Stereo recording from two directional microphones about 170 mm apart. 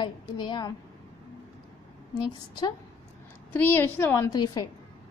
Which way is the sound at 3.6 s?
15° left (ahead or behind).